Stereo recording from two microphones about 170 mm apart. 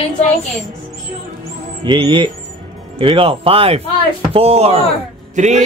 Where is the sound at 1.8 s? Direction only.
30° right (ahead or behind).